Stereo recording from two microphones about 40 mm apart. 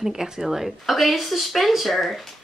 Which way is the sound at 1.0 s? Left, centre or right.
Centre.